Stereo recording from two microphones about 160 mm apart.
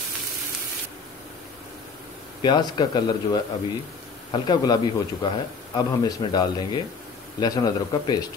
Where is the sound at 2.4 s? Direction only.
25° left (ahead or behind).